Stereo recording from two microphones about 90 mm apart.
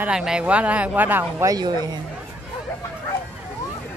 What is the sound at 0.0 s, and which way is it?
Speech, 10° right (ahead or behind).